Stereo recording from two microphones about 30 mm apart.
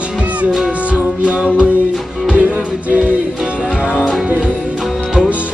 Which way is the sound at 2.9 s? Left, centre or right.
Right.